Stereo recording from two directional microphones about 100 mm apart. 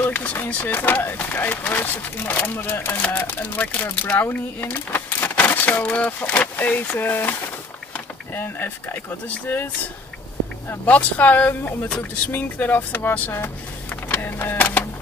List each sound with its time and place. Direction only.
0.0 s speech: 15° left (ahead or behind)
10.7 s speech: 15° left (ahead or behind)